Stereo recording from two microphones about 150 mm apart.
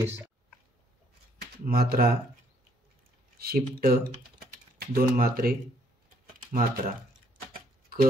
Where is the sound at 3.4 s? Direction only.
90° right; by 5.5 s 75° right (ahead or behind).